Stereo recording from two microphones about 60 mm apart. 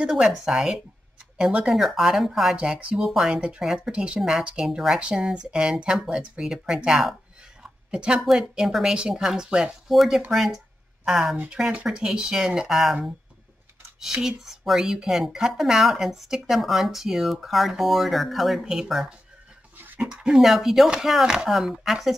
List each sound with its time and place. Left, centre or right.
0.0 s speech: centre
13.9 s speech: centre